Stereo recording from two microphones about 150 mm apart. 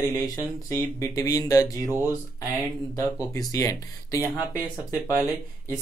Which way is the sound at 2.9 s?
20° left (ahead or behind).